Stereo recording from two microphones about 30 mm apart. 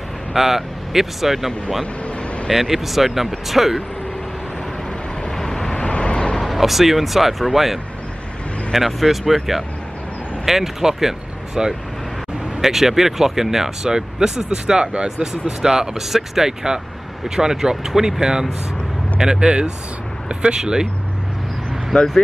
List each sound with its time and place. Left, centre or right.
0.3 s speech: centre
5.3 s vehicle: centre
5.8 s vehicle: left
6.4 s speech: centre
19.4 s speech: right
21.9 s speech: centre